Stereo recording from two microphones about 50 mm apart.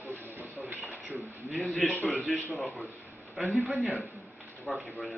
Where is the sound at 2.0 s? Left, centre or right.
Centre.